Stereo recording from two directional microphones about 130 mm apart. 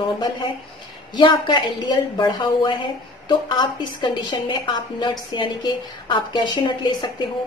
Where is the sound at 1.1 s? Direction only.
35° left (ahead or behind).